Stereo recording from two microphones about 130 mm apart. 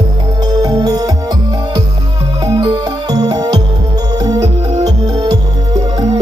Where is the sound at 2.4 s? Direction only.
30° right (ahead or behind).